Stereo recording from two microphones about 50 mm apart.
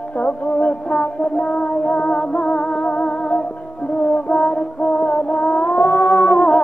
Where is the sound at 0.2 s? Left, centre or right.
Left.